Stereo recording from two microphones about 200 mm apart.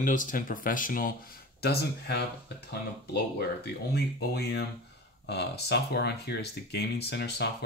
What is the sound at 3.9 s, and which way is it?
Speech, 55° left (ahead or behind).